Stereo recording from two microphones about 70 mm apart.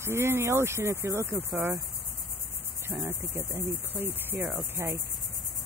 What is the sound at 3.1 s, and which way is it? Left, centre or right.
A woman's voice, right.